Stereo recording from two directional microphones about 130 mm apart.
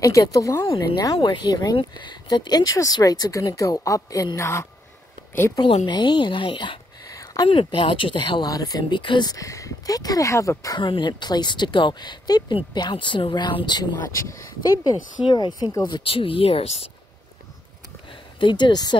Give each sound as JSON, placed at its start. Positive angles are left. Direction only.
{"t": 0.0, "sound": "speech", "side_deg": 25}
{"t": 5.9, "sound": "speech", "side_deg": 35}
{"t": 7.1, "sound": "a sound", "side_deg": 25}
{"t": 7.4, "sound": "speech", "side_deg": 40}
{"t": 10.8, "sound": "speech", "side_deg": 40}
{"t": 14.1, "sound": "speech", "side_deg": 25}
{"t": 18.4, "sound": "speech", "side_deg": 35}